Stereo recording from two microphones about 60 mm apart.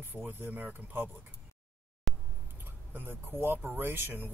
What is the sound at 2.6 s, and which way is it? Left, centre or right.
Speech, right.